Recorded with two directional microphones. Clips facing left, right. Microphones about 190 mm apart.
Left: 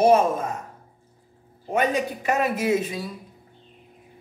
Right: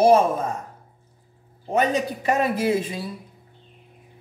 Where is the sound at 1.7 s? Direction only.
35° right (ahead or behind).